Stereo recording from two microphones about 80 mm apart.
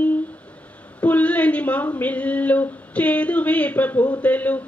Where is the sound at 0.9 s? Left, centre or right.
Centre.